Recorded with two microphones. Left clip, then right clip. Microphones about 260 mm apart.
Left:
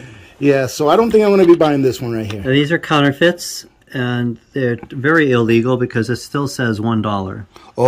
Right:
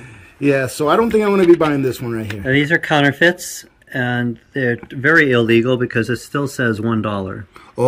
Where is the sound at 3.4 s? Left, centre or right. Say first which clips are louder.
Left 4 dB; left.